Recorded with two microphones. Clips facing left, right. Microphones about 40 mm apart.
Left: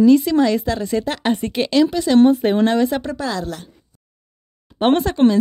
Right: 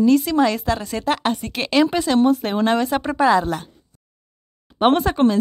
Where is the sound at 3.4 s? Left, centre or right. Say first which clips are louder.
Right 4 dB; centre.